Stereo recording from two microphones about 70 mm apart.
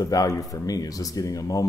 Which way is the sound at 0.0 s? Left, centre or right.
Left.